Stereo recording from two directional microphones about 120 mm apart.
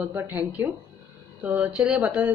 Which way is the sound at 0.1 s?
15° right (ahead or behind).